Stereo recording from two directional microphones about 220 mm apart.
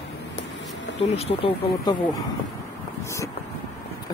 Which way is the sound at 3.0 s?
15° left (ahead or behind).